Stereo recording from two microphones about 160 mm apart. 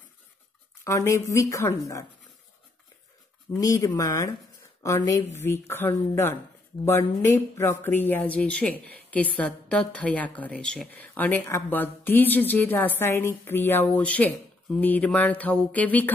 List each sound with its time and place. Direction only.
0.8 s a woman's voice: 20° left (ahead or behind)
3.5 s a woman's voice: 20° left (ahead or behind)